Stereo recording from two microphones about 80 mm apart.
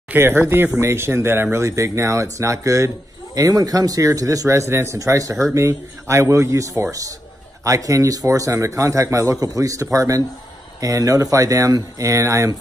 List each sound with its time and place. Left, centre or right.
0.1 s speech: right
3.3 s a man's voice: right